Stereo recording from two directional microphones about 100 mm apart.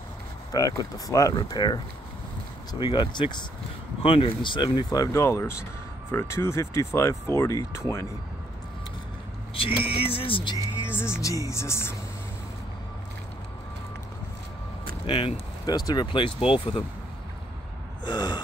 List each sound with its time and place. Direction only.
0.5 s speech: 35° left (ahead or behind)
4.0 s speech: 65° left (ahead or behind); by 8.1 s 30° left (ahead or behind)
9.5 s speech: 65° left (ahead or behind)
10.9 s speech: 25° left (ahead or behind)
15.0 s speech: 60° left (ahead or behind)
15.6 s speech: 45° left (ahead or behind); by 16.8 s 65° left (ahead or behind)
18.0 s speech: 45° left (ahead or behind)